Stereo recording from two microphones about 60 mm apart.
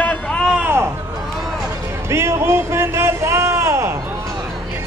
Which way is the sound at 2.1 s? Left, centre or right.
Right.